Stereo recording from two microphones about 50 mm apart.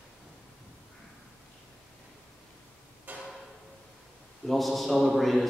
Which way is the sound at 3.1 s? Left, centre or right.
Right.